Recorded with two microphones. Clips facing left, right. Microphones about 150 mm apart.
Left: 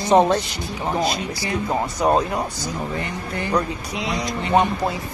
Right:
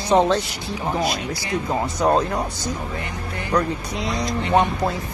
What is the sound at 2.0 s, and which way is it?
Speech, 10° left (ahead or behind).